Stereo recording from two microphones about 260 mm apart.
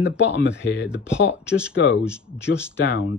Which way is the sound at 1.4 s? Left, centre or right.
Centre.